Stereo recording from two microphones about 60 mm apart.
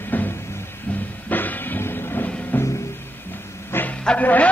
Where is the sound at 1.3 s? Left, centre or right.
Left.